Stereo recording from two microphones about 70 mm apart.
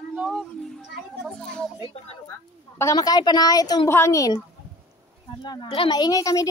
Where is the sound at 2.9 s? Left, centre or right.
Left.